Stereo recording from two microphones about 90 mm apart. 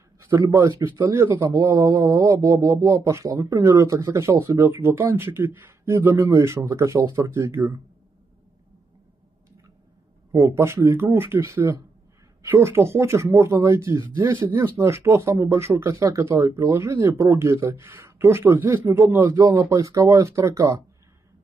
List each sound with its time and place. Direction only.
0.4 s a man's voice: 35° right (ahead or behind)
10.3 s a man's voice: 30° right (ahead or behind)
19.7 s a man's voice: 35° right (ahead or behind)